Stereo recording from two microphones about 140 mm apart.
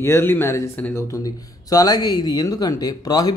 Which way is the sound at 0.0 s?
15° left (ahead or behind).